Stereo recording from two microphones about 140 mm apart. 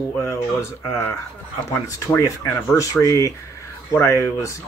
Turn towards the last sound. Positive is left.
turn(degrees=20)  # may be behind; listen again after turning